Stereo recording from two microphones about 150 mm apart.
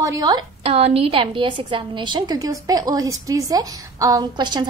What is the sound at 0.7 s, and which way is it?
A woman's voice, 40° right (ahead or behind).